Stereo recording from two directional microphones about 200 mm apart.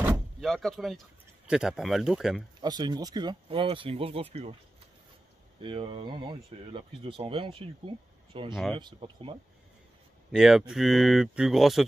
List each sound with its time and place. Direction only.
0.0 s door: 5° right (ahead or behind)
1.5 s speech: 5° right (ahead or behind)
2.6 s speech: 20° right (ahead or behind)
5.6 s speech: 25° right (ahead or behind)
10.3 s speech: 5° right (ahead or behind)